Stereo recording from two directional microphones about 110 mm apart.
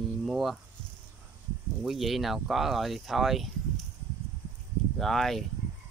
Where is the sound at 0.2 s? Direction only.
Centre (ahead or behind).